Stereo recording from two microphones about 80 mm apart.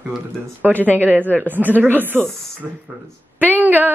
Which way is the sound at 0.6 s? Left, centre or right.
Centre.